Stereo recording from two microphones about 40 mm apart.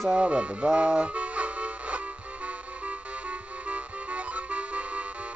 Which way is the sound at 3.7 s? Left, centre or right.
Right.